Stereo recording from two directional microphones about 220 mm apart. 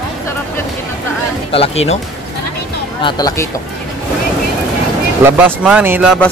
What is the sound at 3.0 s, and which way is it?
Speech, 20° left (ahead or behind).